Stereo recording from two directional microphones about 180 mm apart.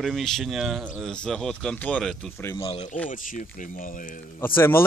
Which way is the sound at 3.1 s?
50° left (ahead or behind).